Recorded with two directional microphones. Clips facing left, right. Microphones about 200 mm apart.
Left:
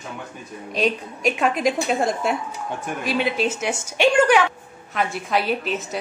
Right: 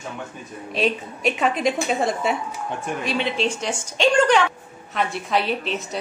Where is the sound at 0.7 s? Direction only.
Centre (ahead or behind).